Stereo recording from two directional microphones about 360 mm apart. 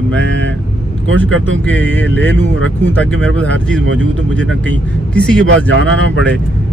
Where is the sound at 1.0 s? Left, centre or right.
Right.